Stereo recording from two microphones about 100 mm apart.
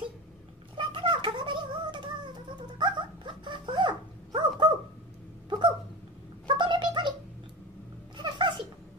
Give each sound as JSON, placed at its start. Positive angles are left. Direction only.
{"t": 0.7, "sound": "a sound", "side_deg": -50}
{"t": 2.8, "sound": "dog", "side_deg": -50}
{"t": 6.4, "sound": "gargling", "side_deg": -50}
{"t": 8.2, "sound": "cat", "side_deg": -50}